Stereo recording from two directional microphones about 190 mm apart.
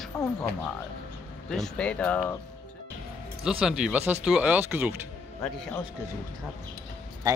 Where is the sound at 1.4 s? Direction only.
5° left (ahead or behind).